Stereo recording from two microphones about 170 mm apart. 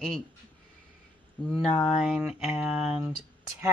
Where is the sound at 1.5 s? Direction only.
5° left (ahead or behind).